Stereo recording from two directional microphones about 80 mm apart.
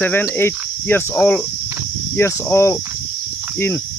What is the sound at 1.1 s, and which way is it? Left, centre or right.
Speech, centre.